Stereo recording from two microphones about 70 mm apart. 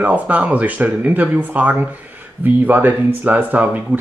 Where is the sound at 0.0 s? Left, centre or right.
Right.